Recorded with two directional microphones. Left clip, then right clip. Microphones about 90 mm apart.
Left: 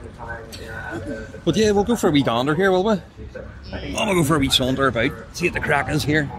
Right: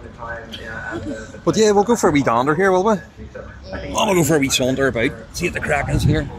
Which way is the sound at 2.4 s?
25° left (ahead or behind).